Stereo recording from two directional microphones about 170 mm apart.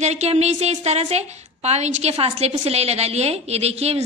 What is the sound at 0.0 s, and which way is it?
A woman's voice, 40° right (ahead or behind).